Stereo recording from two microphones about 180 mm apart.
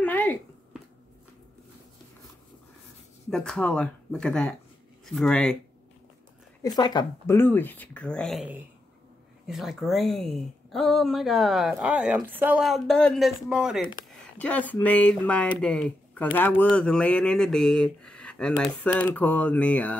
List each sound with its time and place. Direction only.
0.0 s a sound: 10° left (ahead or behind)
3.3 s speech: 5° left (ahead or behind)
6.6 s a woman's voice: 20° left (ahead or behind)
7.3 s speech: 10° left (ahead or behind); by 12.6 s 10° right (ahead or behind)
12.6 s speech: centre (ahead or behind)
14.4 s speech: 10° left (ahead or behind)